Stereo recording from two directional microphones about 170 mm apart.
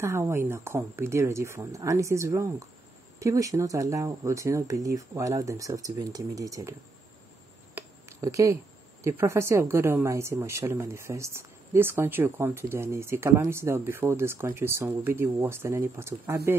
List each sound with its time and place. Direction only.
0.0 s speech: 15° right (ahead or behind)
7.7 s a sound: 15° right (ahead or behind)
9.0 s speech: 15° right (ahead or behind)